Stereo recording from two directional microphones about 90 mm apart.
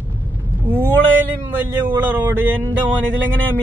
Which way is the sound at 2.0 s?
25° right (ahead or behind).